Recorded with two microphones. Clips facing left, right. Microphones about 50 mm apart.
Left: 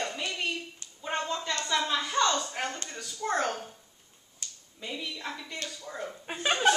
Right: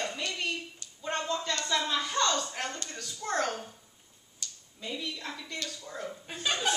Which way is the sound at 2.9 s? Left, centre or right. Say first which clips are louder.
Left 3 dB; centre.